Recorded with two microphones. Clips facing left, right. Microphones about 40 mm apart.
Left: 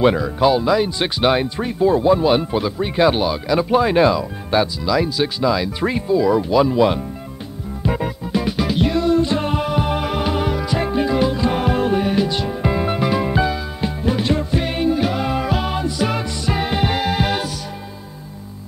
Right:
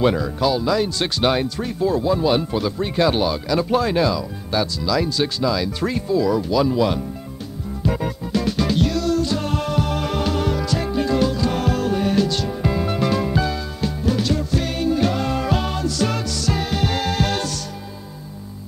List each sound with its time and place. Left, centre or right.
0.0 s speech: centre
7.8 s music: centre